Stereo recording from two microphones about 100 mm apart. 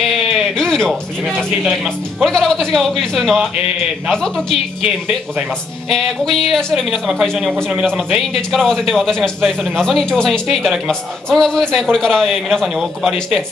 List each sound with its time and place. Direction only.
0.6 s speech: 5° left (ahead or behind)
1.6 s speech: 5° right (ahead or behind)
2.3 s a man's voice: 5° left (ahead or behind)
5.9 s a man's voice: centre (ahead or behind)